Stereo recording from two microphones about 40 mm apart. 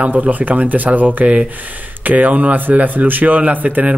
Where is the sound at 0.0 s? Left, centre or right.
Right.